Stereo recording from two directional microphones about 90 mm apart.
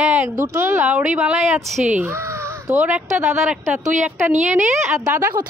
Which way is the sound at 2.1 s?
30° right (ahead or behind).